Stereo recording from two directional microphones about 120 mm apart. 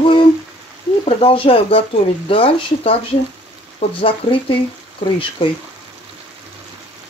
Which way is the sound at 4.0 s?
50° left (ahead or behind).